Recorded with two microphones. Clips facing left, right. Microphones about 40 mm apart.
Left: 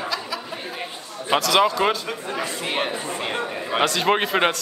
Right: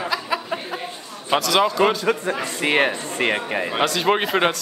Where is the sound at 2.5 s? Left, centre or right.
Right.